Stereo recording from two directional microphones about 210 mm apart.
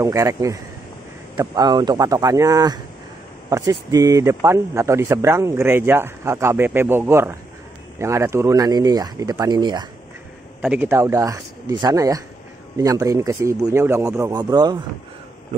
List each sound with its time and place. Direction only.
0.0 s speech: 15° right (ahead or behind)
10.6 s speech: 5° right (ahead or behind)